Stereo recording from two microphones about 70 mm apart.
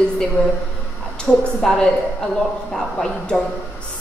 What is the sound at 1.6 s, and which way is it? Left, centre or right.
A woman's voice, centre.